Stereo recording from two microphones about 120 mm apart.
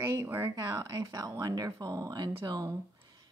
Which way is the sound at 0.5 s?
35° right (ahead or behind).